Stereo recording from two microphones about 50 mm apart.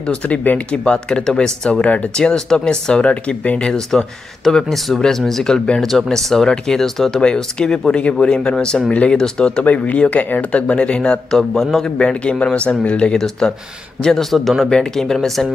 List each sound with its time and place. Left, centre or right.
0.0 s speech: left
0.7 s speech: centre
1.7 s speech: left
4.5 s speech: centre
7.2 s speech: centre
9.6 s speech: left
11.2 s speech: centre
14.4 s speech: centre
14.7 s speech: centre